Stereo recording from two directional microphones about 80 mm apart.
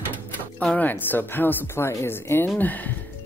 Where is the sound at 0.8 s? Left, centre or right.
Left.